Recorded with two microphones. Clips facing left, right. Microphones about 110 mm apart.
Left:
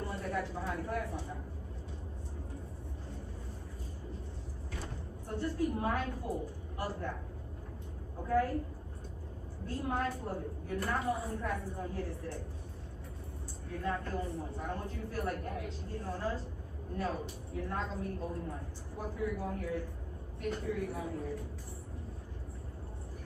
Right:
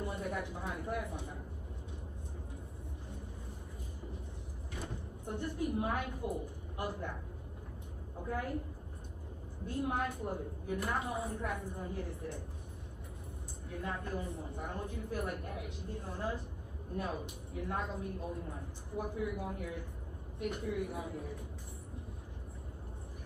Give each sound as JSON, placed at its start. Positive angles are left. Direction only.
{"t": 0.0, "sound": "speech", "side_deg": -15}
{"t": 4.7, "sound": "a woman's voice", "side_deg": -15}
{"t": 8.3, "sound": "a woman's voice", "side_deg": -15}
{"t": 9.7, "sound": "a woman's voice", "side_deg": -15}
{"t": 13.7, "sound": "a woman's voice", "side_deg": -15}